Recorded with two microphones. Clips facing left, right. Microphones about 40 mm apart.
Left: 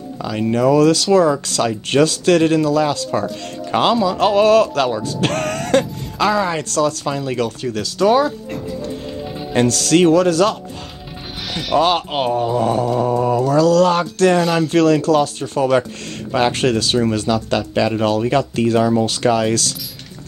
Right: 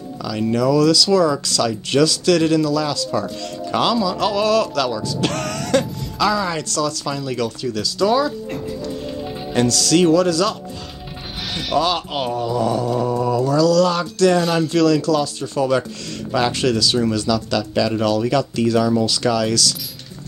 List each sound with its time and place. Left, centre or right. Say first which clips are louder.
0.2 s speech: left 2 dB; left
7.4 s speech: left 1 dB; left
9.5 s speech: left 2 dB; left
11.8 s speech: left 4 dB; left
13.1 s a sound: left 3 dB; left
13.4 s speech: left 1 dB; left
14.4 s speech: left 2 dB; centre
14.7 s speech: left 3 dB; left